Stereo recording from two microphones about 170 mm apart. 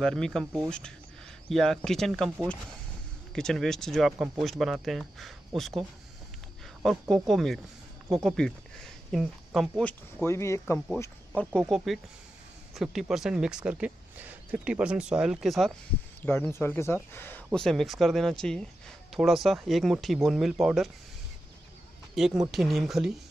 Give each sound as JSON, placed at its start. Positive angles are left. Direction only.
{"t": 0.0, "sound": "speech", "side_deg": 5}
{"t": 3.3, "sound": "speech", "side_deg": 5}
{"t": 10.2, "sound": "speech", "side_deg": 15}
{"t": 16.2, "sound": "speech", "side_deg": 10}
{"t": 17.5, "sound": "speech", "side_deg": 0}
{"t": 22.1, "sound": "speech", "side_deg": 0}